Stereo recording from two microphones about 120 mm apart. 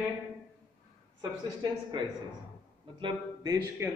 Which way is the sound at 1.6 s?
40° right (ahead or behind).